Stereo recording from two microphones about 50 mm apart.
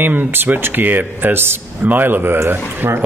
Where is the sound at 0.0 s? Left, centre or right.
Right.